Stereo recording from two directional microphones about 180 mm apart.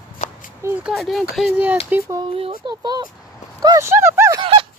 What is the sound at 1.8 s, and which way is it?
Speech, 10° right (ahead or behind).